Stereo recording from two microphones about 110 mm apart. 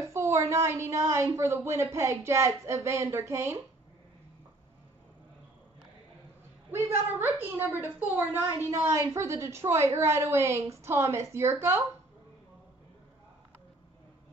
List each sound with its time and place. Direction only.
0.0 s a woman's voice: 25° right (ahead or behind)
6.7 s a woman's voice: 20° right (ahead or behind)
8.6 s a woman's voice: 30° right (ahead or behind)